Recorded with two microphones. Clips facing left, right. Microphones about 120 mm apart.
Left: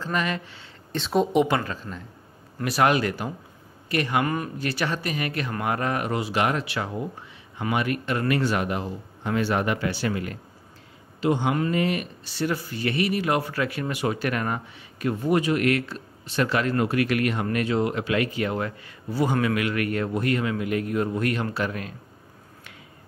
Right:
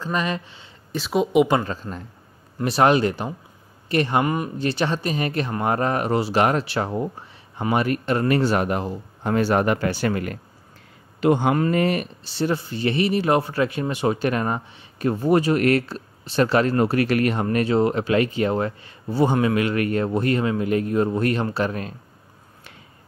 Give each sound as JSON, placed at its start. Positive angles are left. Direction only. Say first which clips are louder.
{"t": 0.0, "sound": "speech", "louder": "right 2 dB", "side_deg": -20}
{"t": 0.9, "sound": "speech", "louder": "right 3 dB", "side_deg": -5}
{"t": 1.5, "sound": "a man's voice", "louder": "right 4 dB", "side_deg": -25}
{"t": 12.3, "sound": "speech", "louder": "right 3 dB", "side_deg": -30}